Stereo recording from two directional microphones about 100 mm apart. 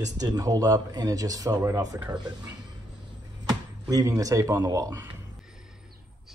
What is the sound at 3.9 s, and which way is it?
Speech, 35° right (ahead or behind).